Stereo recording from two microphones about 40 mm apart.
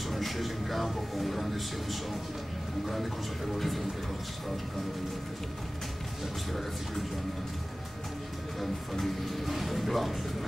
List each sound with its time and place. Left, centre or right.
0.1 s speech: centre
3.5 s speech: centre
8.5 s speech: centre